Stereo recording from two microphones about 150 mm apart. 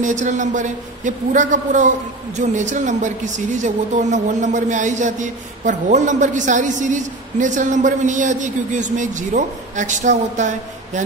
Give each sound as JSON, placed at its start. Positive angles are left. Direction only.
{"t": 0.0, "sound": "speech", "side_deg": -55}